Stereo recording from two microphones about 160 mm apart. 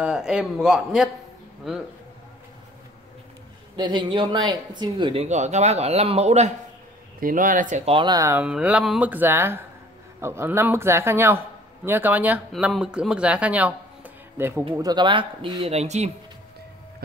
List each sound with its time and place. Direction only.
0.0 s speech: 5° right (ahead or behind)
3.7 s speech: 25° right (ahead or behind); by 6.5 s 45° right (ahead or behind)
7.2 s speech: 60° right (ahead or behind); by 8.4 s 25° right (ahead or behind)
8.4 s a man's voice: 5° right (ahead or behind)
14.8 s speech: 25° right (ahead or behind); by 16.1 s 45° right (ahead or behind)